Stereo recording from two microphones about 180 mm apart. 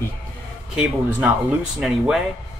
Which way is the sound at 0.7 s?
5° right (ahead or behind).